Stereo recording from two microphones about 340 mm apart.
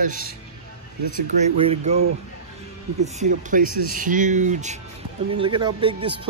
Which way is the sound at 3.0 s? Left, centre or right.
Right.